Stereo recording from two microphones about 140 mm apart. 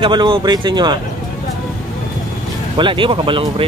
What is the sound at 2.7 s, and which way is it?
Speech, 35° right (ahead or behind).